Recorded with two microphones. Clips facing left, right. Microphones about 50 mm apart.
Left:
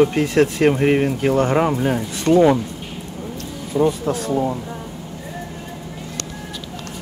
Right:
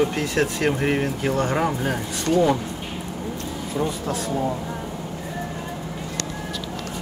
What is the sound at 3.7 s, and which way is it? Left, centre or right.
Speech, centre.